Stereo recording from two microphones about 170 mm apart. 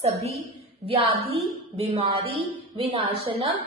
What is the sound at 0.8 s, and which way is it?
A woman's voice, 35° right (ahead or behind).